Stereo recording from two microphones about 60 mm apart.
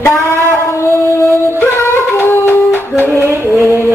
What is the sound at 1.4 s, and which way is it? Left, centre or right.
Music, left.